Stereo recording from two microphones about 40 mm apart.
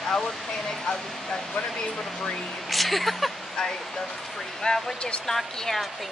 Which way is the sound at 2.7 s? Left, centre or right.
Centre.